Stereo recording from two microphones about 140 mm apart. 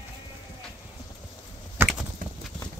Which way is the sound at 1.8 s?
15° right (ahead or behind).